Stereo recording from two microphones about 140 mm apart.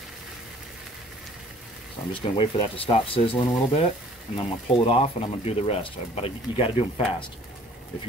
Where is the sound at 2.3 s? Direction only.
40° left (ahead or behind).